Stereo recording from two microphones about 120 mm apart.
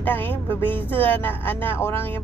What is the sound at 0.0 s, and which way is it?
Speech, 15° left (ahead or behind).